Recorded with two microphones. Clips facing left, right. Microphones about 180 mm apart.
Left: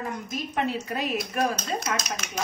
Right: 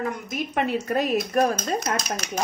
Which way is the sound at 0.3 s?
55° right (ahead or behind).